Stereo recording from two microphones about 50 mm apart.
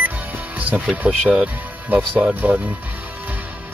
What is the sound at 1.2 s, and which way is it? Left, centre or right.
Speech, right.